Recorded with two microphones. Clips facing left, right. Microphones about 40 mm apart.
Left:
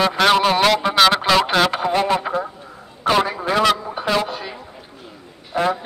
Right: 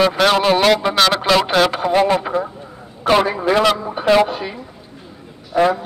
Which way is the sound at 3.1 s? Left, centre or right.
Centre.